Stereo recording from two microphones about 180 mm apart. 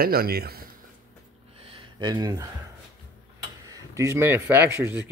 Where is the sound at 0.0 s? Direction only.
55° right (ahead or behind).